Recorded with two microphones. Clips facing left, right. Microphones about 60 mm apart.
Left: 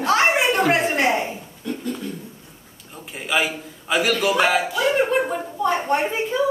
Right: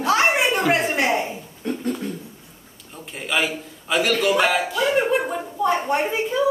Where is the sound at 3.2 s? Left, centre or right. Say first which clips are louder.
Left 1 dB; centre.